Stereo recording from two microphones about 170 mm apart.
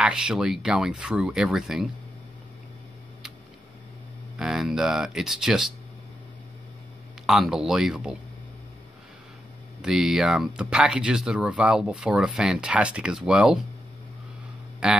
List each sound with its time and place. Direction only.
0.0 s speech: 5° right (ahead or behind)
4.4 s speech: centre (ahead or behind)
7.2 s speech: centre (ahead or behind)
9.8 s speech: 5° right (ahead or behind)
14.8 s speech: 5° right (ahead or behind)